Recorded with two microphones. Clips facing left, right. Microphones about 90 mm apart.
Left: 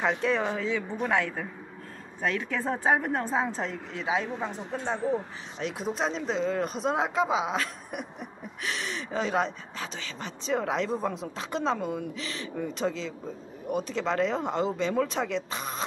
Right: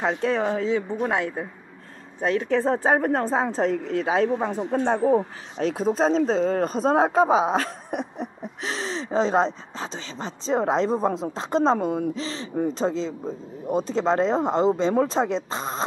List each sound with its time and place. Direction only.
0.0 s a woman's voice: 35° right (ahead or behind)